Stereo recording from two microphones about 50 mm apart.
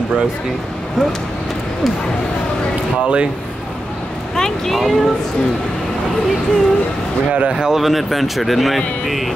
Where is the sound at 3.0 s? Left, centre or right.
Right.